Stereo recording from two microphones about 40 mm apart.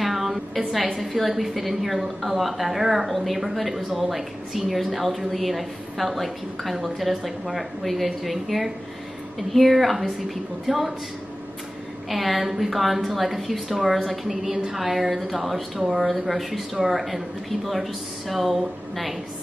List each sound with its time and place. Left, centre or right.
0.0 s a woman's voice: centre
12.1 s a woman's voice: centre